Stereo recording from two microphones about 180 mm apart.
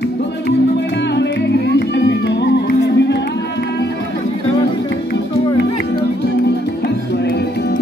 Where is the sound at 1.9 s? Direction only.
75° left (ahead or behind).